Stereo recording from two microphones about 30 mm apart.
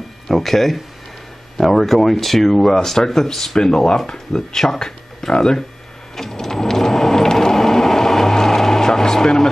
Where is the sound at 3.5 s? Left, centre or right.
Left.